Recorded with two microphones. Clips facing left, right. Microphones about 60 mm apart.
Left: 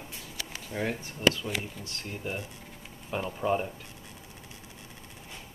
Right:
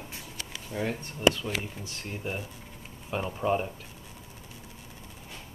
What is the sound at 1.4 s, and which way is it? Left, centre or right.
Speech, centre.